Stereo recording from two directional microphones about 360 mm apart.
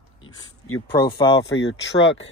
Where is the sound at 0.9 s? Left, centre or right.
Left.